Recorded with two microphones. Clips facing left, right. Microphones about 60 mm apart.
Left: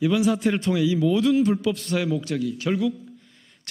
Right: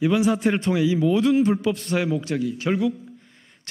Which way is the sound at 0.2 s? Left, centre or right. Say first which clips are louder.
Right 1 dB; right.